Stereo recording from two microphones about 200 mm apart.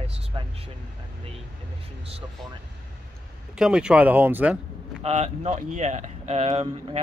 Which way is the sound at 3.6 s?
5° right (ahead or behind).